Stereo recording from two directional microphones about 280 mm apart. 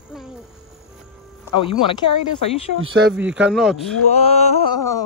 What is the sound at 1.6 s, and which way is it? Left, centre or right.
Speech, centre.